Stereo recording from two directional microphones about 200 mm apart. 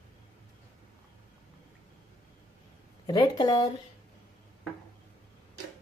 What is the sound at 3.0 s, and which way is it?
Speech, 20° left (ahead or behind).